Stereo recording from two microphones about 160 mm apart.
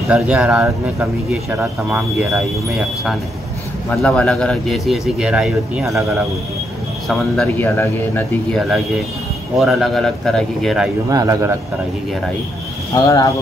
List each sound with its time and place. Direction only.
0.1 s a man's voice: 5° right (ahead or behind)
7.5 s speech: 10° left (ahead or behind)
8.5 s a man's voice: centre (ahead or behind)
11.1 s a man's voice: 20° right (ahead or behind)
12.9 s speech: 20° left (ahead or behind)